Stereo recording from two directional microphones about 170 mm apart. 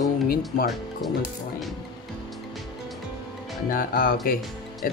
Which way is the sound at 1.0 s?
Centre (ahead or behind).